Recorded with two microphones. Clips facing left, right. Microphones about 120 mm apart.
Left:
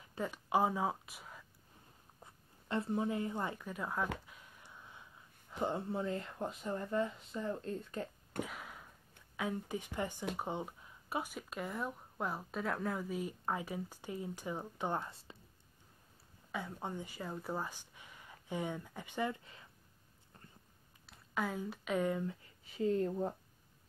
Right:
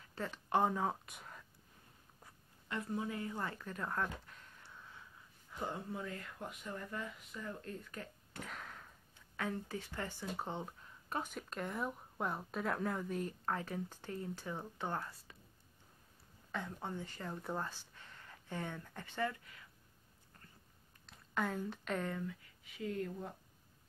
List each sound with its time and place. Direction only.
0.0 s speech: 15° left (ahead or behind)
2.1 s speech: 25° left (ahead or behind); by 4.1 s 10° left (ahead or behind)
4.3 s a sound: 10° left (ahead or behind)
5.6 s speech: 25° left (ahead or behind)
8.4 s a sound: 10° left (ahead or behind)
9.4 s speech: 15° left (ahead or behind)
16.5 s speech: 10° left (ahead or behind)
21.1 s speech: 5° left (ahead or behind)
22.2 s speech: 30° left (ahead or behind)